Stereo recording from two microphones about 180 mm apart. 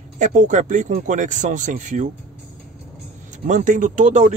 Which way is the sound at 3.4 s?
45° right (ahead or behind).